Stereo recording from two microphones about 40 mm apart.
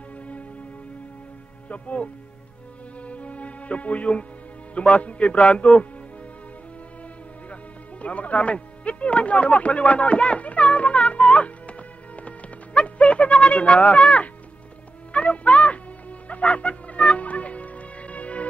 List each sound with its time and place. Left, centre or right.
1.7 s a man's voice: left
3.0 s music: left
4.7 s a man's voice: left
8.0 s speech: left
12.2 s music: left